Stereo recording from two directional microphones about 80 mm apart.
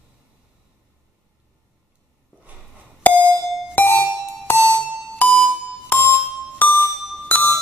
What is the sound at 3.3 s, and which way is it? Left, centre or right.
Music, left.